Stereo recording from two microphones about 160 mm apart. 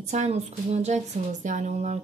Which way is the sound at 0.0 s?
45° right (ahead or behind).